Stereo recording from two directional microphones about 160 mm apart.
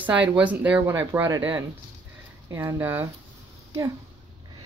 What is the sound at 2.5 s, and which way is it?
Speech, 15° right (ahead or behind).